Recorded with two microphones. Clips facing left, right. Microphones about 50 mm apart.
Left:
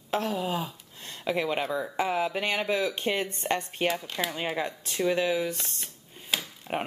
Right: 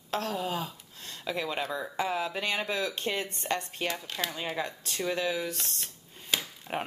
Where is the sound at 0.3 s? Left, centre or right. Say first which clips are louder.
Left 2 dB; centre.